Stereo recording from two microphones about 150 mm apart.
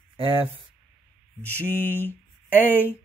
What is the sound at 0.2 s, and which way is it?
Speech, 35° right (ahead or behind).